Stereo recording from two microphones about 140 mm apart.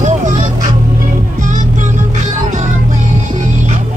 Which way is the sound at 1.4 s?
65° right (ahead or behind).